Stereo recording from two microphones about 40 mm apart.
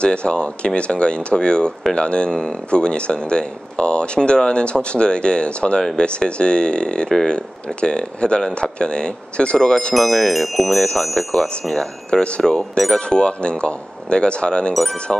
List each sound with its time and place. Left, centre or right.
0.0 s speech: left
9.9 s wind chime: centre
11.7 s speech: left